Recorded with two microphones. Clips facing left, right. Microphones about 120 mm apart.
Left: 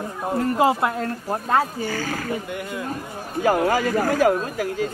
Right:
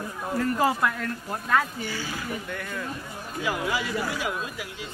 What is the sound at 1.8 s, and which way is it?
Speech, 50° left (ahead or behind).